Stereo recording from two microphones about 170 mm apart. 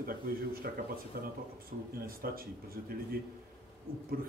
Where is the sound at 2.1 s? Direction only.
60° right (ahead or behind).